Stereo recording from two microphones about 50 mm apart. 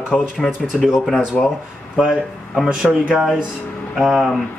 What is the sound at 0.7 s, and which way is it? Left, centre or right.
Speech, centre.